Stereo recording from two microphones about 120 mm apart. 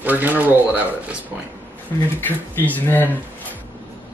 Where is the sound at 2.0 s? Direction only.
15° left (ahead or behind).